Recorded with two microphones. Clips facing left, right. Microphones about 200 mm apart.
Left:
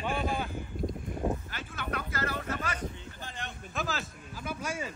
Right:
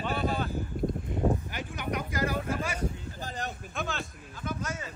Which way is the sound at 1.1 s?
25° right (ahead or behind).